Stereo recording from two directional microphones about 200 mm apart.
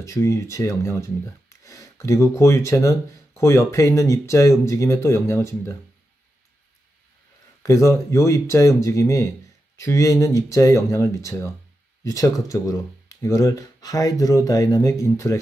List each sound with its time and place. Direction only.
0.0 s speech: 15° left (ahead or behind)
7.6 s speech: 15° left (ahead or behind)